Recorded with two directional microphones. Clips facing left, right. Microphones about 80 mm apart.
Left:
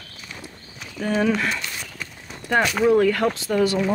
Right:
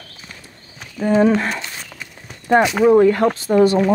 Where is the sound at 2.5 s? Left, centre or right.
Right.